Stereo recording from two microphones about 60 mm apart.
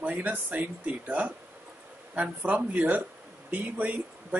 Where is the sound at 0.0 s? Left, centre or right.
Right.